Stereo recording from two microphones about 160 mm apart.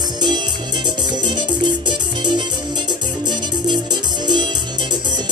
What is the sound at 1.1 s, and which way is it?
Music, 30° right (ahead or behind).